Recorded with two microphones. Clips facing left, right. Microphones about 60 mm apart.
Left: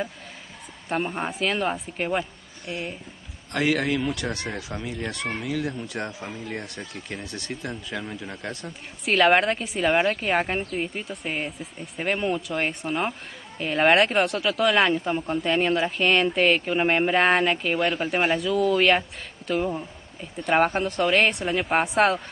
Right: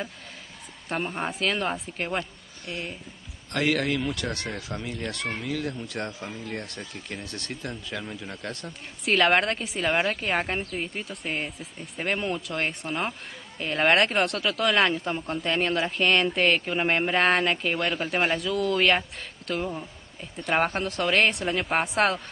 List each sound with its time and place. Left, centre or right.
0.8 s speech: centre
3.5 s speech: left
9.0 s speech: centre